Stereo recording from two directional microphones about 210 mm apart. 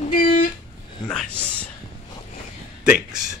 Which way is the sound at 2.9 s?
5° right (ahead or behind).